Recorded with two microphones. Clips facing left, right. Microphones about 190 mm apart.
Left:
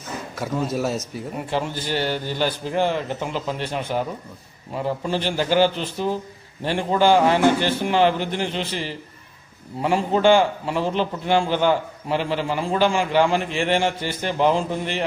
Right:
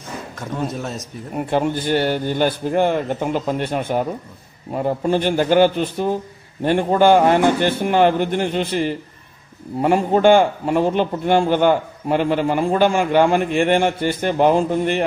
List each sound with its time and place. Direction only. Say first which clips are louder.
0.4 s speech: left 2 dB; 5° left (ahead or behind)
1.5 s speech: right 7 dB; 55° right (ahead or behind)